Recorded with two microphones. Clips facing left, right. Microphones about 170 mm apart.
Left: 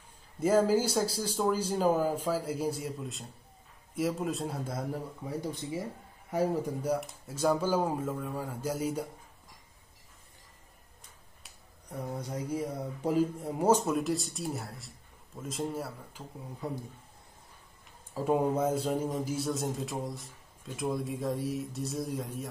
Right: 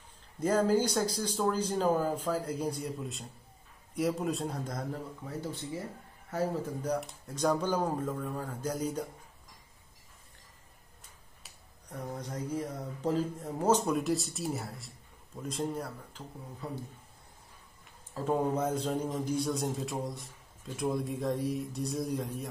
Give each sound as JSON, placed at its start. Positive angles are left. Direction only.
{"t": 0.4, "sound": "speech", "side_deg": 5}
{"t": 11.9, "sound": "speech", "side_deg": 10}
{"t": 18.1, "sound": "speech", "side_deg": 10}